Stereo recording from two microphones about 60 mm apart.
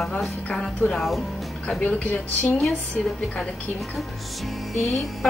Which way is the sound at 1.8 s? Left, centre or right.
Left.